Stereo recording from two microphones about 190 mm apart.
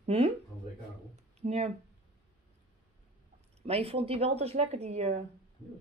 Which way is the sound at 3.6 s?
30° right (ahead or behind).